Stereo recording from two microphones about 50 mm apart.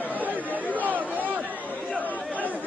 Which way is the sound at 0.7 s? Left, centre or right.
Right.